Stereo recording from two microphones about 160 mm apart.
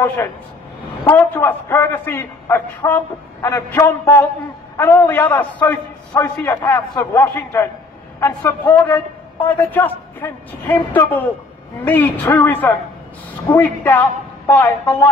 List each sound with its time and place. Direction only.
1.0 s a man's voice: 15° left (ahead or behind)